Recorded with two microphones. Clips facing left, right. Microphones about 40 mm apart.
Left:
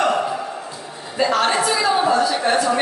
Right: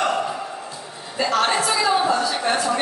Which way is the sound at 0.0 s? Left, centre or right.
Centre.